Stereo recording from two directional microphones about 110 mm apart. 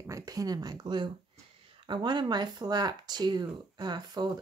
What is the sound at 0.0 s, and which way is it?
Speech, 30° right (ahead or behind).